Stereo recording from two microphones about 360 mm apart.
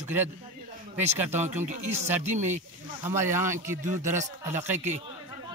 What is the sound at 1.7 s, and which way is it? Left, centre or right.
Speech, centre.